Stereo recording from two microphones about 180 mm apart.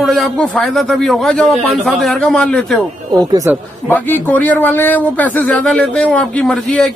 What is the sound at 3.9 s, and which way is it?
Speech, 10° left (ahead or behind).